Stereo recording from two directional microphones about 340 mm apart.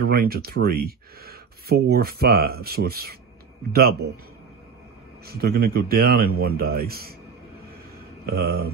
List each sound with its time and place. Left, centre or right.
0.0 s speech: right
5.2 s speech: right
8.3 s speech: right